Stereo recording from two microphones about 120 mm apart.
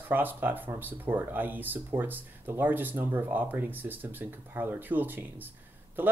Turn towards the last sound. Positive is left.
turn(degrees=-15)  # may be behind; listen again after turning